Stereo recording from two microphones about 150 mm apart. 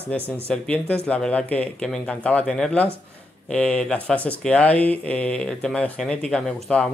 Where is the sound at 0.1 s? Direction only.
10° left (ahead or behind).